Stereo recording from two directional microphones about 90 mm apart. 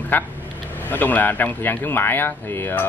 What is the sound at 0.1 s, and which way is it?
Speech, 20° left (ahead or behind).